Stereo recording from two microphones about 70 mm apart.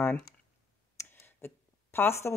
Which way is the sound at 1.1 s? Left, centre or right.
Left.